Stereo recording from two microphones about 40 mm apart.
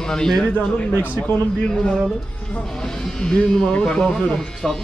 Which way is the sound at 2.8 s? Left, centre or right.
Centre.